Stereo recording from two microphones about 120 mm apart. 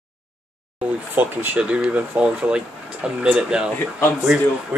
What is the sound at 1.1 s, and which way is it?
Speech, 15° right (ahead or behind).